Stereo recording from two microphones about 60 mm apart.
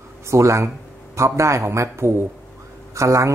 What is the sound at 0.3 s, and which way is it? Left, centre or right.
Speech, right.